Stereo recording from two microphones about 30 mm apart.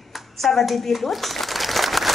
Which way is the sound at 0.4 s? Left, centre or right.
Centre.